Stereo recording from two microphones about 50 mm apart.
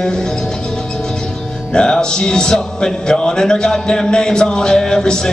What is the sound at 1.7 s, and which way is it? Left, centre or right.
Music, centre.